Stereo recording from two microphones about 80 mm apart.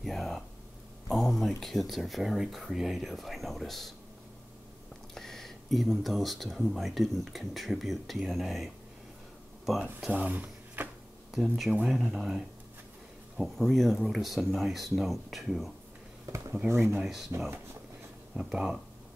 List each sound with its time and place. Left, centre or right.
0.0 s a sound: centre
1.0 s speech: centre
5.1 s speech: centre
9.8 s speech: centre
11.8 s speech: centre
13.4 s speech: centre
16.3 s a sound: right
16.5 s speech: right
17.0 s speech: centre
18.3 s speech: centre